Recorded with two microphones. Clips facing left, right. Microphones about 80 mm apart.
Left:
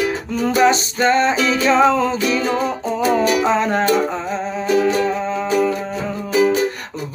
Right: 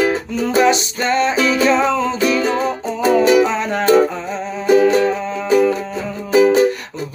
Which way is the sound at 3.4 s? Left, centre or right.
Left.